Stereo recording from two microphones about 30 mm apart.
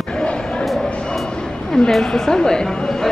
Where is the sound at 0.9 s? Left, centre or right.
Left.